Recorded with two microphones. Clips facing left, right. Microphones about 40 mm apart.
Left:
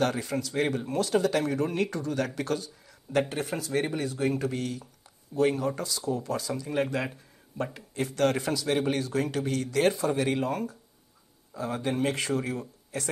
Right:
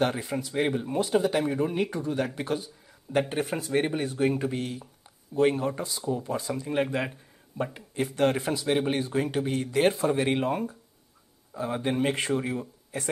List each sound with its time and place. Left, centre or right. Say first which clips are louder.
0.0 s speech: even; centre